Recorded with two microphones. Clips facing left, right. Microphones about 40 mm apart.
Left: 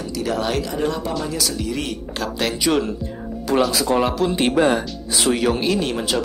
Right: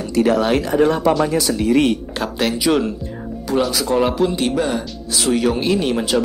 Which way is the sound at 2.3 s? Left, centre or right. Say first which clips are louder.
Right 3 dB; centre.